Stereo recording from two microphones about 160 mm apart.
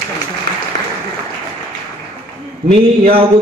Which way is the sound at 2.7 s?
35° right (ahead or behind).